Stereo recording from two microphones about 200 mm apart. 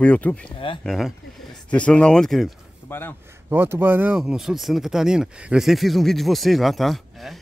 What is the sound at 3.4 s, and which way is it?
Speech, 10° right (ahead or behind).